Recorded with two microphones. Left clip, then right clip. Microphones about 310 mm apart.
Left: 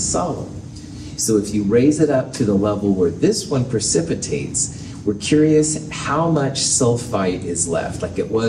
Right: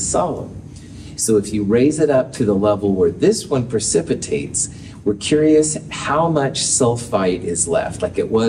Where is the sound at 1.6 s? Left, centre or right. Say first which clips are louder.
Even; right.